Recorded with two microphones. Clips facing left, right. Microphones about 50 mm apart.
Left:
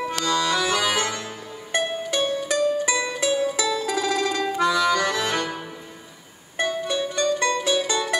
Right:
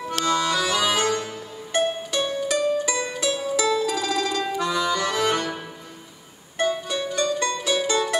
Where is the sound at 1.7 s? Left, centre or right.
Left.